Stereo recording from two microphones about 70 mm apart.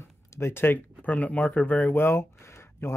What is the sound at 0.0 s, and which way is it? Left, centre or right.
Speech, left.